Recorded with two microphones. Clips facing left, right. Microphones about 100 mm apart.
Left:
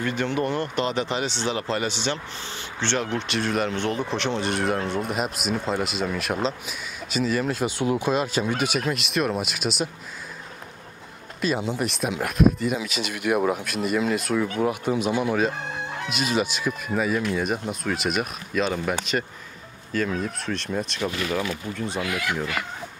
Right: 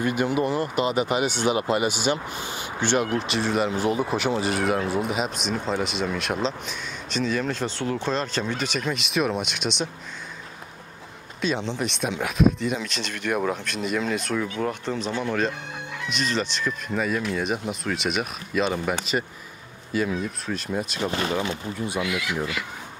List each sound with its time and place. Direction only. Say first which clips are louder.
0.0 s speech: right 2 dB; 10° right (ahead or behind)
11.4 s speech: left 1 dB; 5° left (ahead or behind)
15.5 s chicken: left 4 dB; 35° left (ahead or behind)
16.1 s speech: left 1 dB; 10° left (ahead or behind)
21.0 s speech: right 2 dB; 30° right (ahead or behind)
22.0 s speech: even; 45° left (ahead or behind)